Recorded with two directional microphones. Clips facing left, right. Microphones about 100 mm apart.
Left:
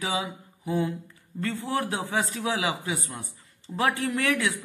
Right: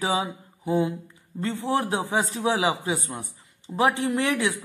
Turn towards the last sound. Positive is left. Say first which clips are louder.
# right 2 dB
turn(degrees=-25)  # may be behind; listen again after turning